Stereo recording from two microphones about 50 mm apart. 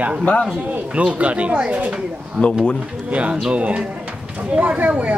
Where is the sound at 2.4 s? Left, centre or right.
Centre.